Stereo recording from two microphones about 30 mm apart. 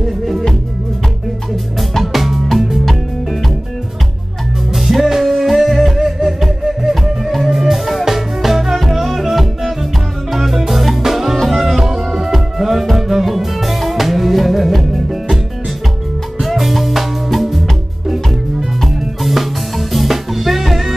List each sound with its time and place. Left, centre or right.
1.8 s music: centre
4.7 s music: centre
16.3 s music: centre